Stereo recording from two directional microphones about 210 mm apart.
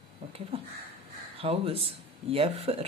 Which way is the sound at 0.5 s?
25° right (ahead or behind).